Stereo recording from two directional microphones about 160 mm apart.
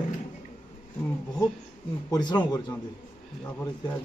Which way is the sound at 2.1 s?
25° left (ahead or behind).